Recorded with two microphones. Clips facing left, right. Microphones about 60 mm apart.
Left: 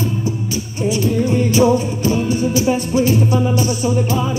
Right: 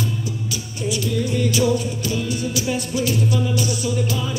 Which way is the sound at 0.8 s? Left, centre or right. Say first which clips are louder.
Left 6 dB; left.